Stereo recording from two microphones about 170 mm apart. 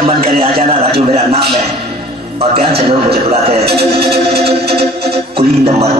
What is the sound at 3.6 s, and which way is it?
Music, 70° right (ahead or behind).